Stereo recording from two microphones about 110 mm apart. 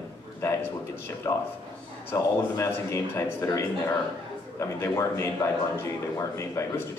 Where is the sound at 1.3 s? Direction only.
25° left (ahead or behind).